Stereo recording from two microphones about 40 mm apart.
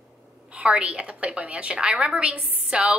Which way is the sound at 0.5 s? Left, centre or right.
Right.